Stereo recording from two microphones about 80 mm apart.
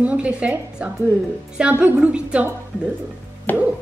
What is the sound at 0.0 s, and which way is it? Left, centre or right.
A woman's voice, centre.